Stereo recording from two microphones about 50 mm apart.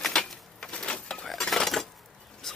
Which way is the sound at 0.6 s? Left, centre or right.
Centre.